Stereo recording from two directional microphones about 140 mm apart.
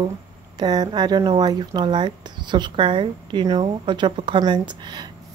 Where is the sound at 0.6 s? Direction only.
30° right (ahead or behind).